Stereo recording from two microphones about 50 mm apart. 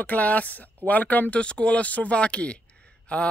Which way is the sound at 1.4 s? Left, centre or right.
Left.